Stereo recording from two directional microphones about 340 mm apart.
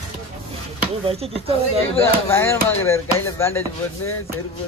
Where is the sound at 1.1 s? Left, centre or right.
Centre.